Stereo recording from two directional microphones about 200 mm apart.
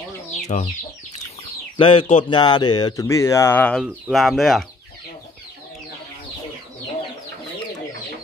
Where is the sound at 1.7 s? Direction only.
25° left (ahead or behind); by 3.8 s 10° left (ahead or behind).